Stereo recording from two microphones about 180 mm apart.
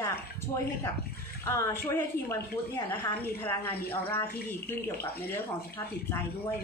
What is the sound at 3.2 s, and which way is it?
Speech, 10° left (ahead or behind).